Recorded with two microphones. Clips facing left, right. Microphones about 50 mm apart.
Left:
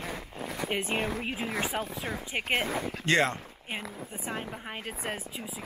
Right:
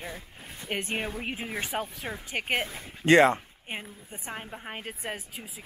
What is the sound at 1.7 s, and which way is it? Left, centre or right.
Speech, centre.